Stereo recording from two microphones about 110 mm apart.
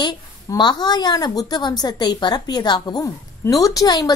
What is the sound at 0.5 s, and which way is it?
A woman's voice, 40° left (ahead or behind).